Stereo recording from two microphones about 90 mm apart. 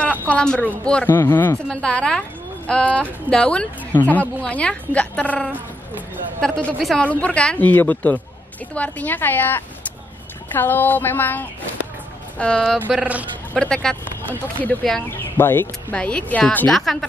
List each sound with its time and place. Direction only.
0.3 s a woman's voice: 10° left (ahead or behind)
1.0 s speech: 20° left (ahead or behind)
1.7 s a woman's voice: 10° left (ahead or behind)
6.4 s a woman's voice: 5° left (ahead or behind)
7.0 s a woman's voice: 15° left (ahead or behind)
13.0 s speech: 15° right (ahead or behind)
13.6 s a woman's voice: 10° left (ahead or behind)
14.2 s speech: 20° left (ahead or behind)
15.9 s a woman's voice: 10° left (ahead or behind)